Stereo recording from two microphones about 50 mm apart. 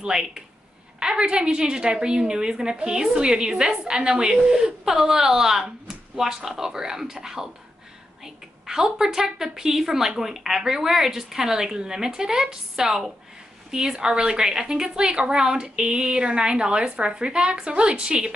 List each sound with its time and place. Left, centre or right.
0.9 s a woman's voice: centre